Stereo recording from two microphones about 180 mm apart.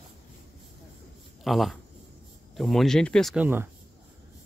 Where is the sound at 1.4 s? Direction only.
Centre (ahead or behind).